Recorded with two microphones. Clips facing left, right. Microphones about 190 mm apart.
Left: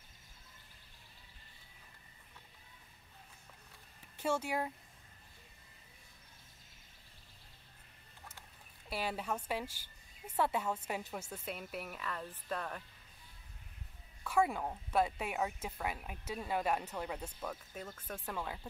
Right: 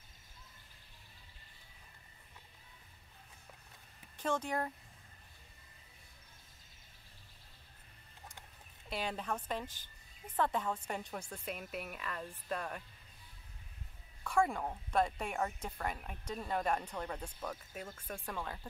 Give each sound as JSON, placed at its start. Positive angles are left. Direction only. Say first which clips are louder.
{"t": 4.2, "sound": "speech", "louder": "left 1 dB", "side_deg": 10}
{"t": 8.8, "sound": "a woman's voice", "louder": "left 1 dB", "side_deg": 5}
{"t": 14.2, "sound": "a woman's voice", "louder": "even", "side_deg": 5}
{"t": 17.7, "sound": "speech", "louder": "even", "side_deg": -10}
{"t": 18.2, "sound": "speech", "louder": "left 2 dB", "side_deg": 5}